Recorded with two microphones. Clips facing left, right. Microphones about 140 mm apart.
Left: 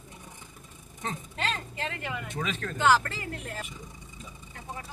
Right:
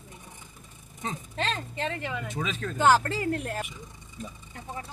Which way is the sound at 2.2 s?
10° right (ahead or behind).